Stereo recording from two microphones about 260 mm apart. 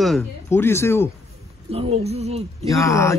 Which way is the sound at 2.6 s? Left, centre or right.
Centre.